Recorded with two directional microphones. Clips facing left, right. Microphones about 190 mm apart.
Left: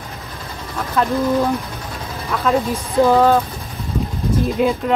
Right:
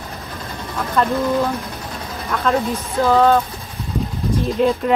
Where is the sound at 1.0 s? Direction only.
5° left (ahead or behind).